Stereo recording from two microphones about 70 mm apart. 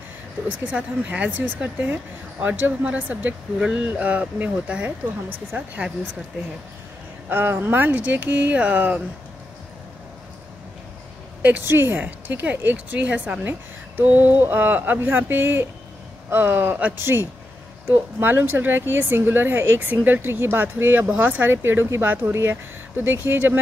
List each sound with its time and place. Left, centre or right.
0.5 s speech: right
7.2 s speech: right
11.4 s speech: right